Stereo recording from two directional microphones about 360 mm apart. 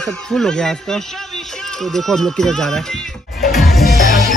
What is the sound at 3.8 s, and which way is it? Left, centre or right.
Music, left.